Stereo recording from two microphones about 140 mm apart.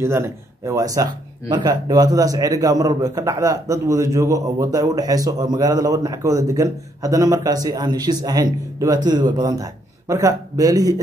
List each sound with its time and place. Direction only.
0.0 s a man's voice: 20° right (ahead or behind)